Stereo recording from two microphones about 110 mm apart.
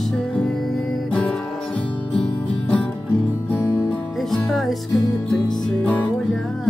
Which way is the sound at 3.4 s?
15° left (ahead or behind).